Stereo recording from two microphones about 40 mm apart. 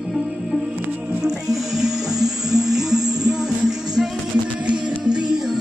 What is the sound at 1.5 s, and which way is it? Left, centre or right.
Music, centre.